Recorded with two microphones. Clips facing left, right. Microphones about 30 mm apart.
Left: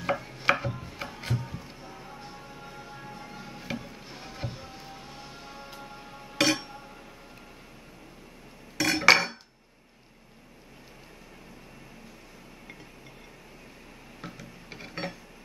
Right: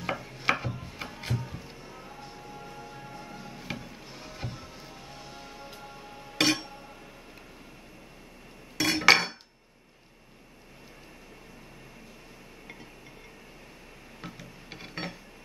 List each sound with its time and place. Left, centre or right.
0.0 s music: centre
3.7 s a sound: centre
4.0 s music: centre
6.4 s music: centre
8.7 s cutlery: centre
14.3 s a sound: centre